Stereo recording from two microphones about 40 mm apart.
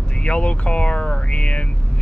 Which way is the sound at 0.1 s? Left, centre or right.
Left.